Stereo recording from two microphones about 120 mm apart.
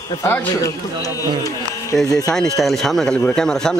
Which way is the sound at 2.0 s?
30° left (ahead or behind).